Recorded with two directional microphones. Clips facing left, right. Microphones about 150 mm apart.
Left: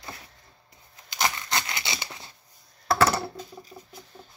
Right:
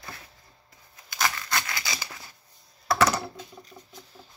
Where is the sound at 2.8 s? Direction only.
30° left (ahead or behind).